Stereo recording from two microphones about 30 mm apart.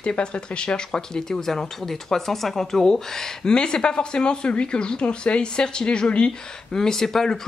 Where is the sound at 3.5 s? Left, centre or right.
Left.